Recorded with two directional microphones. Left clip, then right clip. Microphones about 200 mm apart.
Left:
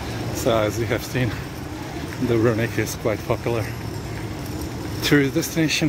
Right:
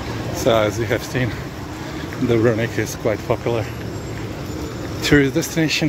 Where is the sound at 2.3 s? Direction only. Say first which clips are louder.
Right 3 dB; centre (ahead or behind).